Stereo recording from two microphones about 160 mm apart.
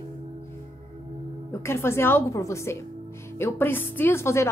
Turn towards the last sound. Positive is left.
turn(degrees=15)  # may be behind; listen again after turning